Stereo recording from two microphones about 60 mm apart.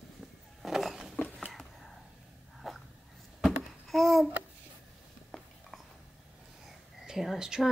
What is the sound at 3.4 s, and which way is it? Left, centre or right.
Babbling, centre.